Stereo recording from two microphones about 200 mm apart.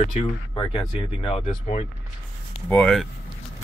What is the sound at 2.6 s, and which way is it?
Speech, 5° left (ahead or behind).